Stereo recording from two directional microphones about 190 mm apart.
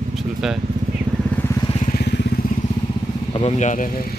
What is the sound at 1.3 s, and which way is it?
Vehicle, 15° left (ahead or behind).